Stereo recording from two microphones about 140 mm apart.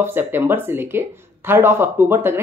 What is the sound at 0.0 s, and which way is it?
Speech, 15° right (ahead or behind).